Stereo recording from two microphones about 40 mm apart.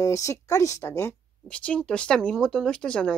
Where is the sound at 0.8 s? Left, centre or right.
Left.